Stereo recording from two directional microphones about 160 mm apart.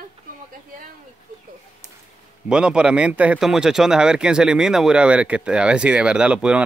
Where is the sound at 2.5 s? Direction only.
5° right (ahead or behind).